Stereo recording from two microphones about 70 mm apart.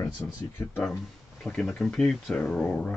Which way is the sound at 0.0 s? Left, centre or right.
Left.